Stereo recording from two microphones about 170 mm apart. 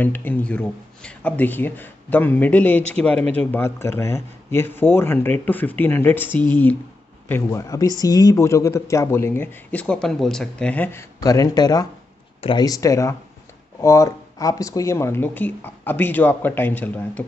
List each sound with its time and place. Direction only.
0.0 s speech: 10° left (ahead or behind)